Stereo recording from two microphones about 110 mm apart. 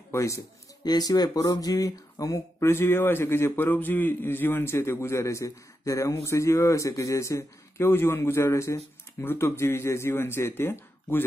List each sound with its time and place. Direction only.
0.1 s speech: 25° left (ahead or behind)